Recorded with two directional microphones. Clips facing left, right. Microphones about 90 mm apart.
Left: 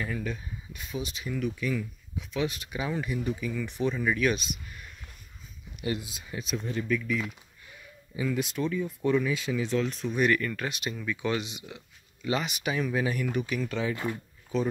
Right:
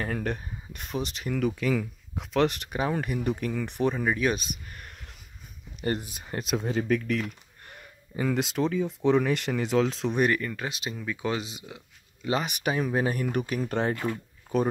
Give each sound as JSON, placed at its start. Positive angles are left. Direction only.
{"t": 0.0, "sound": "speech", "side_deg": -55}
{"t": 2.7, "sound": "speech", "side_deg": -50}
{"t": 4.0, "sound": "speech", "side_deg": -35}
{"t": 4.6, "sound": "whispering", "side_deg": -50}
{"t": 5.9, "sound": "speech", "side_deg": -50}
{"t": 6.5, "sound": "speech", "side_deg": -90}
{"t": 10.3, "sound": "speech", "side_deg": -20}
{"t": 13.9, "sound": "speech", "side_deg": 10}